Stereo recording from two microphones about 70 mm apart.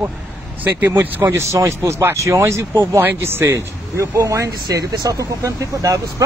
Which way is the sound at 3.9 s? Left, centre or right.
Right.